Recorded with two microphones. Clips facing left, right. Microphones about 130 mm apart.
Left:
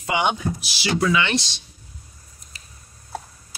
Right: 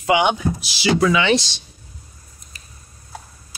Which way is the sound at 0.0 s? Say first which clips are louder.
Right 5 dB; 85° right.